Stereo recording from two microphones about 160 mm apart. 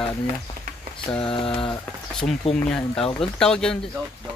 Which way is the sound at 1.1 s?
20° left (ahead or behind).